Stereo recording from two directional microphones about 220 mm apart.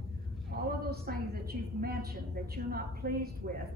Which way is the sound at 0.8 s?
45° right (ahead or behind).